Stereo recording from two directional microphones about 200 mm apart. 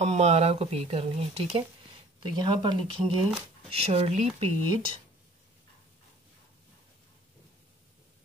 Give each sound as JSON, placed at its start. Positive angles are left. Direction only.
{"t": 0.0, "sound": "speech", "side_deg": -35}